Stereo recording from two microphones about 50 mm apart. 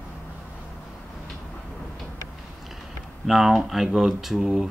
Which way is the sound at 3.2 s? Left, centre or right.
Centre.